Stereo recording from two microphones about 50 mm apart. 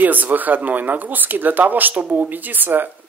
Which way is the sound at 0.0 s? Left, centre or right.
Right.